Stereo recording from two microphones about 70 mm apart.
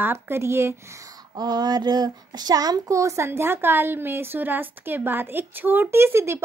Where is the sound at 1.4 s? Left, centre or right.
Right.